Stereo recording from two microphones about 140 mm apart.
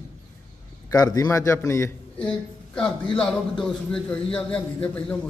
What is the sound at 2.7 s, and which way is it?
A man's voice, 5° left (ahead or behind).